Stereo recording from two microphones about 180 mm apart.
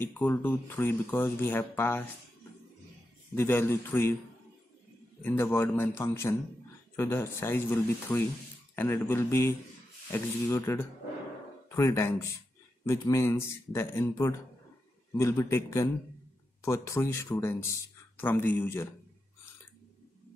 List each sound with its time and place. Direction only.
0.0 s speech: 10° left (ahead or behind)
3.3 s speech: 15° left (ahead or behind)
5.2 s speech: 10° left (ahead or behind)